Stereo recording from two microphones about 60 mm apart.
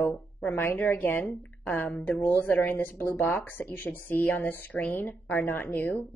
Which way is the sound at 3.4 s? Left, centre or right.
Left.